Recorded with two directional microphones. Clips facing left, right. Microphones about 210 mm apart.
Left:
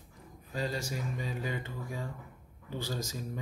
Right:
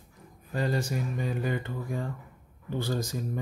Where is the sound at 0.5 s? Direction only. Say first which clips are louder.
Right 6 dB; 55° right (ahead or behind).